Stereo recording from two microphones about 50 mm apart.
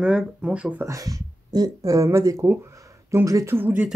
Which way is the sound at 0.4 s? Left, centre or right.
Right.